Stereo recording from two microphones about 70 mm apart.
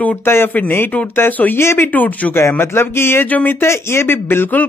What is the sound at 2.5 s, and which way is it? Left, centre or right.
Speech, left.